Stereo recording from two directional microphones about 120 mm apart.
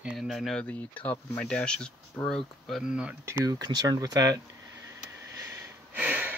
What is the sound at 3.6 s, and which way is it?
Speech, 35° right (ahead or behind).